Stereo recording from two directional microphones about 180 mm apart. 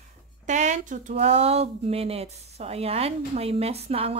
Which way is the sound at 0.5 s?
40° right (ahead or behind).